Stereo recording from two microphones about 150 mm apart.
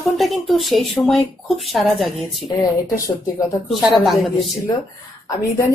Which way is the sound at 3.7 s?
Centre (ahead or behind).